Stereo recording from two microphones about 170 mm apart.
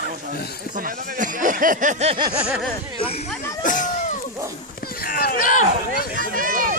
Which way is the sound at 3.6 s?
50° left (ahead or behind).